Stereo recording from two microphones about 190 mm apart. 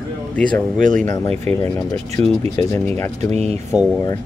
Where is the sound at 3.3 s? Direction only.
35° right (ahead or behind).